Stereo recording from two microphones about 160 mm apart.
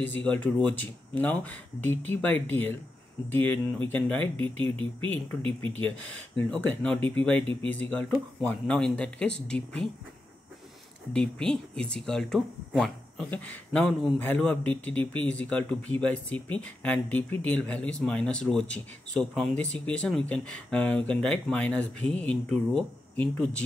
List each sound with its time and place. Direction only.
0.0 s speech: 10° left (ahead or behind)
5.4 s speech: 35° right (ahead or behind)
6.5 s speech: 10° left (ahead or behind)
11.1 s speech: 5° left (ahead or behind)